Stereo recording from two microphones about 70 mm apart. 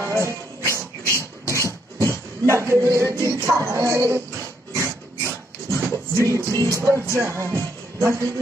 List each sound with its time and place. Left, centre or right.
0.0 s music: right
4.7 s dog: right